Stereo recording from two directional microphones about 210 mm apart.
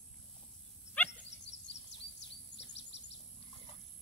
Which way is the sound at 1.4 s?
55° left (ahead or behind).